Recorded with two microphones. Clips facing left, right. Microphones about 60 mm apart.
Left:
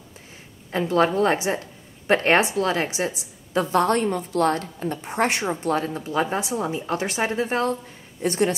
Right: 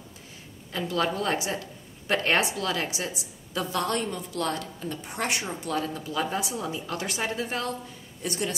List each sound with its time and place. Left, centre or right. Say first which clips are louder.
0.7 s a woman's voice: left 7 dB; left